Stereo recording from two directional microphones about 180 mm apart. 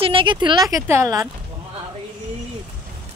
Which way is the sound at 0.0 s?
30° right (ahead or behind).